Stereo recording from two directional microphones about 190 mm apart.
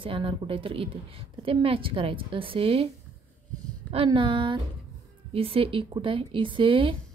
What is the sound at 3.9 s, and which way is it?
Speech, 25° right (ahead or behind).